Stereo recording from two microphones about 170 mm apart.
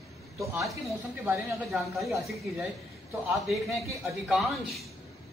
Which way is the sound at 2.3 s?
Centre (ahead or behind).